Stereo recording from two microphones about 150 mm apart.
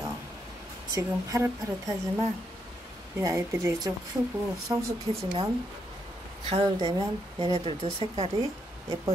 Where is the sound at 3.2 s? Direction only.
20° right (ahead or behind).